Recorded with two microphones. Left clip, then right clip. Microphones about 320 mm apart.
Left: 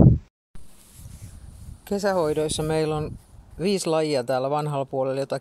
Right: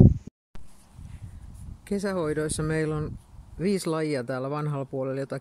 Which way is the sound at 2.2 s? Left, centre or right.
Left.